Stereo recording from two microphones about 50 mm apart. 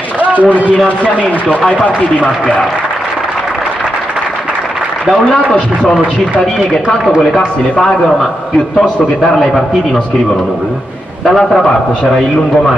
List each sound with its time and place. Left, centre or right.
0.2 s speech: right
5.1 s a man's voice: centre
8.7 s a man's voice: centre
11.2 s a man's voice: centre